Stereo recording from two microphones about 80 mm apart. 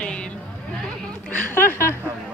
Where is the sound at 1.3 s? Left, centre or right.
Left.